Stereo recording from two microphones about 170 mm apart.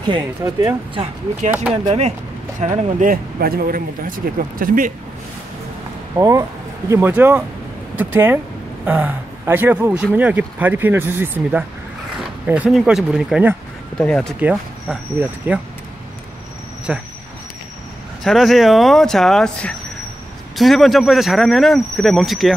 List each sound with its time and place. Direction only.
0.4 s speech: 15° right (ahead or behind)
0.9 s speech: 35° right (ahead or behind)
1.5 s speech: 5° right (ahead or behind)
1.9 s speech: 40° right (ahead or behind)
6.1 s speech: 20° right (ahead or behind)
13.9 s speech: 5° left (ahead or behind)
14.4 s speech: 5° right (ahead or behind)
16.9 s speech: 5° right (ahead or behind)
18.2 s speech: centre (ahead or behind)